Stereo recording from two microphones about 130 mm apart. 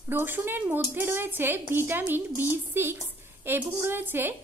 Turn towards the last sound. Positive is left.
turn(degrees=-15)  # may be behind; listen again after turning